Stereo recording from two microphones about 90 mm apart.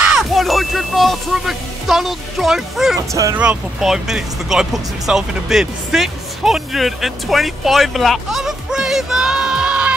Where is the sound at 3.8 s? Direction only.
5° right (ahead or behind).